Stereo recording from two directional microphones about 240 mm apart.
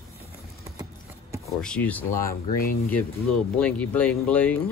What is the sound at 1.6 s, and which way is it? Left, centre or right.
Speech, centre.